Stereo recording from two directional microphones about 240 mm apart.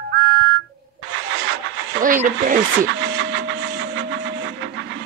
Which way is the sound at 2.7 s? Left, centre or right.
Right.